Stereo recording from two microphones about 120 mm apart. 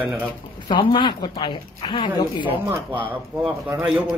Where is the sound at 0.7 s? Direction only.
40° left (ahead or behind).